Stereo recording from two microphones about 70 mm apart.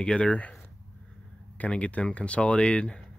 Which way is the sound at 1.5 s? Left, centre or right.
Centre.